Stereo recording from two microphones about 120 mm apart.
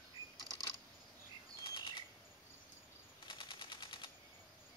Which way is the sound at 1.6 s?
40° left (ahead or behind).